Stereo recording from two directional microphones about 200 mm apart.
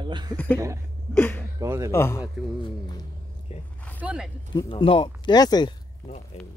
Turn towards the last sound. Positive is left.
turn(degrees=35)  # may be behind; listen again after turning